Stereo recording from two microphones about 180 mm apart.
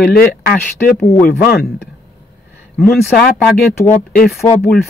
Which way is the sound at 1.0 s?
15° left (ahead or behind).